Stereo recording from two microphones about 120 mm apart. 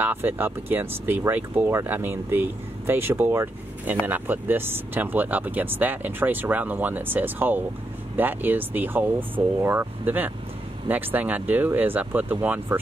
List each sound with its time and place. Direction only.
0.0 s speech: 15° right (ahead or behind)